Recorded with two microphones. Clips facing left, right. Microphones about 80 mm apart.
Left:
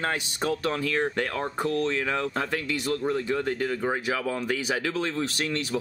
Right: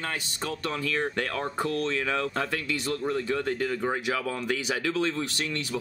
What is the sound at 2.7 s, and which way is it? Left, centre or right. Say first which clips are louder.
Speech: left 4 dB; right.